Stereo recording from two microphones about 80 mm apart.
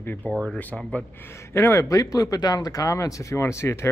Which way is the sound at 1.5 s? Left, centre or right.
Left.